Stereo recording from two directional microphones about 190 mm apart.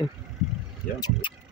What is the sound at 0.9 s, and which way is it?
Speech, 50° left (ahead or behind).